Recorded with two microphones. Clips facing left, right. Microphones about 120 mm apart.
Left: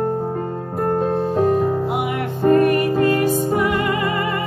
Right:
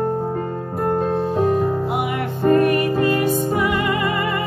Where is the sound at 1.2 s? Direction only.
45° left (ahead or behind).